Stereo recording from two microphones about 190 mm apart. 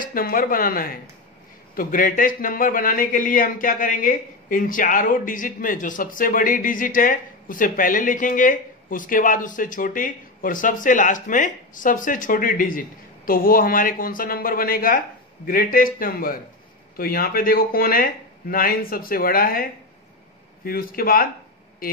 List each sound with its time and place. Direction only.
0.0 s speech: 50° left (ahead or behind)